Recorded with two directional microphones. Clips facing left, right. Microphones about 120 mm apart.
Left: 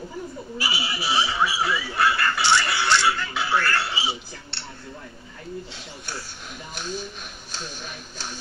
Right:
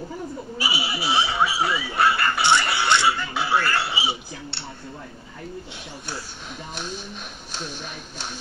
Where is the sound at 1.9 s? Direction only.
20° right (ahead or behind).